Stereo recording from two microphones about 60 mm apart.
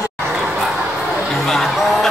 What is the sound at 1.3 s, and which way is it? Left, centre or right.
Music, centre.